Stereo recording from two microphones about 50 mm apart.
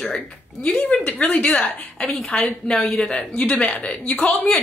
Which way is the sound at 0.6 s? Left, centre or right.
Left.